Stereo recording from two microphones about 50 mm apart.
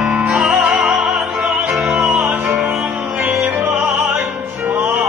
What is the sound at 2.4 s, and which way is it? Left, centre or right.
Music, right.